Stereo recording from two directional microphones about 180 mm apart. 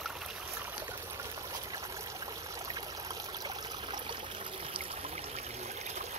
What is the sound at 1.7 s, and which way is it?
Stream, 20° right (ahead or behind).